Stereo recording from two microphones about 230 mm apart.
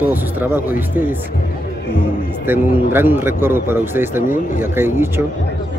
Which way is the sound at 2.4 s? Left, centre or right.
Centre.